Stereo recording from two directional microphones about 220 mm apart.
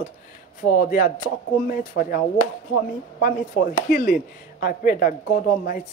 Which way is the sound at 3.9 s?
40° left (ahead or behind).